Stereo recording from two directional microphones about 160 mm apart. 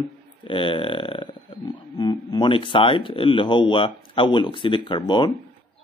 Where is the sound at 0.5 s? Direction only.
30° left (ahead or behind).